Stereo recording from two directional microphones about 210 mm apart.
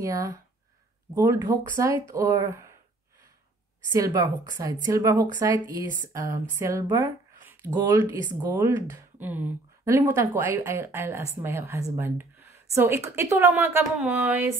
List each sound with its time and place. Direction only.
0.0 s speech: 15° right (ahead or behind)
3.9 s speech: 15° right (ahead or behind)